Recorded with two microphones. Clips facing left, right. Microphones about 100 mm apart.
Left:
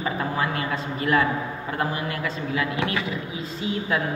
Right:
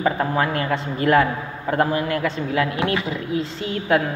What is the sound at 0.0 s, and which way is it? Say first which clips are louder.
Speech: right 5 dB; 50° right (ahead or behind).